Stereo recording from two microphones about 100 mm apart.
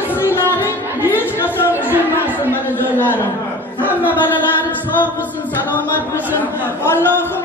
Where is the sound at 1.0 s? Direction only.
20° left (ahead or behind).